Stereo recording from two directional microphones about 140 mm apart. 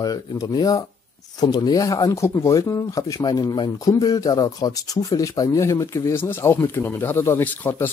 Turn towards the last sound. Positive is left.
turn(degrees=15)  # may be behind; listen again after turning